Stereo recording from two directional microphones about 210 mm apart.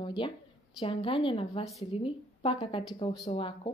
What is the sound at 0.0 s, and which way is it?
A woman's voice, 25° left (ahead or behind).